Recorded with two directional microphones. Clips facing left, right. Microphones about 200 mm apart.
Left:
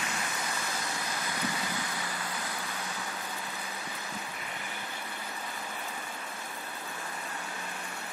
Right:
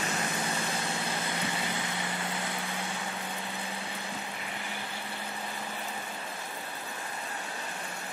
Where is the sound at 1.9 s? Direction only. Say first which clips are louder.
Right 3 dB; 25° right (ahead or behind).